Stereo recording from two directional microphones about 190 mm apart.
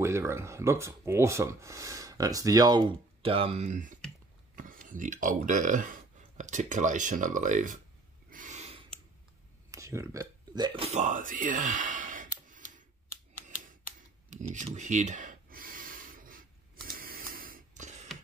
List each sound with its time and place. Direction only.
0.0 s speech: 15° right (ahead or behind); by 7.8 s 45° right (ahead or behind)
8.3 s gasp: 45° right (ahead or behind)
9.7 s burping: 15° right (ahead or behind)
10.9 s speech: 40° right (ahead or behind)
14.3 s a sound: 40° right (ahead or behind)